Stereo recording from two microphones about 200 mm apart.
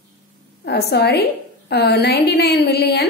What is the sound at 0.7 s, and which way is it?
A woman's voice, 55° left (ahead or behind).